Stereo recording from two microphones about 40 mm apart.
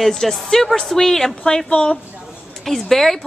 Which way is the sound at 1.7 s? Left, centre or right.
Left.